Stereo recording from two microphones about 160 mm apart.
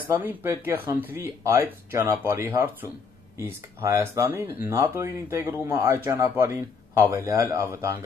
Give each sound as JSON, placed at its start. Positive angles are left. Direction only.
{"t": 0.1, "sound": "speech", "side_deg": -15}